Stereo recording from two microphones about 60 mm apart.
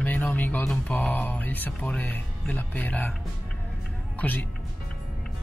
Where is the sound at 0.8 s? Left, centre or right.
Left.